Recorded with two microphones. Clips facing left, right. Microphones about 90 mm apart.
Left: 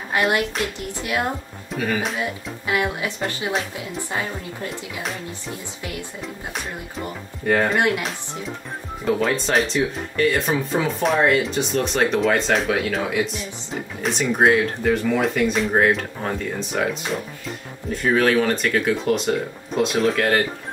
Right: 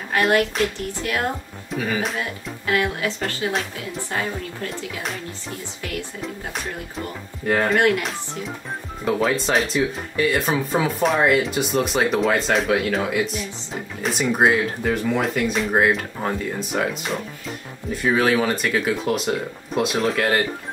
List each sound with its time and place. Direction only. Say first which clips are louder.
0.3 s speech: right 3 dB; 15° left (ahead or behind)
2.6 s speech: right 1 dB; 15° left (ahead or behind)
7.5 s speech: even; 5° left (ahead or behind)
9.0 s speech: even; centre (ahead or behind)